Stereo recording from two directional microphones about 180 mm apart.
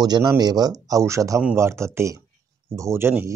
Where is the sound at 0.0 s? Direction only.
20° right (ahead or behind).